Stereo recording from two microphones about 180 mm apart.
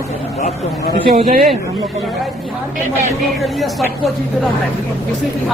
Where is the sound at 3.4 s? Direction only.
Centre (ahead or behind).